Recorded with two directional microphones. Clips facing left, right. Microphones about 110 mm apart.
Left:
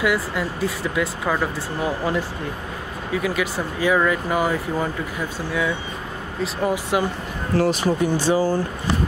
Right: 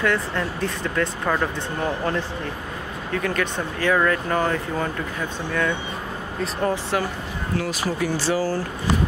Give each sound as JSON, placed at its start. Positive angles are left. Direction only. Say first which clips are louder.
{"t": 0.0, "sound": "speech", "louder": "left 1 dB", "side_deg": 10}